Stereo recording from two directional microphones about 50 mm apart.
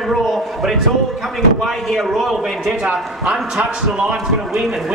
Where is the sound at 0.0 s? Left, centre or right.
Centre.